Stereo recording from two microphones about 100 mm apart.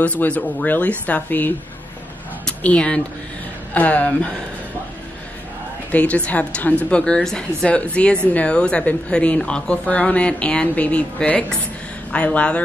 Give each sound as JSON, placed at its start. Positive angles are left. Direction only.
{"t": 0.0, "sound": "speech", "side_deg": 15}
{"t": 5.9, "sound": "speech", "side_deg": 15}